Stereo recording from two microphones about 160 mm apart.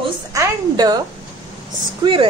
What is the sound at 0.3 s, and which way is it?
Speech, 20° right (ahead or behind).